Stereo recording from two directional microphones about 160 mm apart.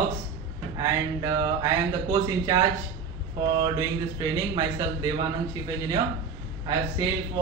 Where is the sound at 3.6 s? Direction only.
20° right (ahead or behind).